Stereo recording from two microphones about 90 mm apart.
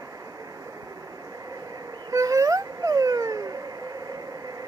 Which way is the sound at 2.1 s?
40° right (ahead or behind).